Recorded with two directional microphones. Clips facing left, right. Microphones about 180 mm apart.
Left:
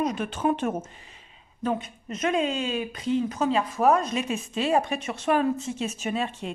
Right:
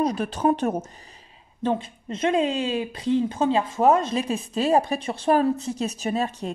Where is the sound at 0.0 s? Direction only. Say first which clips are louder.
Right 3 dB; 35° right (ahead or behind).